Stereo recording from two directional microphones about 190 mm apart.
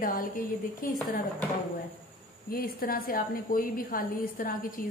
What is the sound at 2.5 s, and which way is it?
A woman's voice, 50° left (ahead or behind).